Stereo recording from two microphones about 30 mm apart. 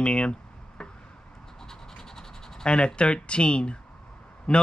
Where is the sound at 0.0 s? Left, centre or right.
Left.